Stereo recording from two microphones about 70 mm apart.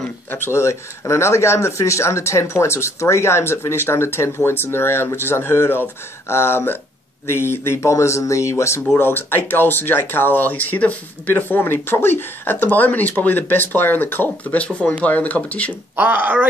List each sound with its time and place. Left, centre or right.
0.3 s speech: left
8.9 s speech: left
16.0 s speech: right